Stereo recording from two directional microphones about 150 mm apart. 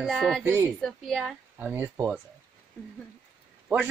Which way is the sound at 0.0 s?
Centre (ahead or behind).